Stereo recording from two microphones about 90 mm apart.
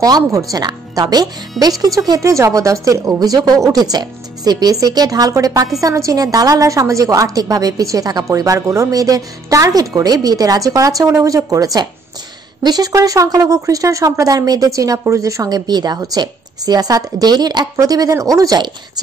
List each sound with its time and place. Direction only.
0.0 s a woman's voice: 40° right (ahead or behind)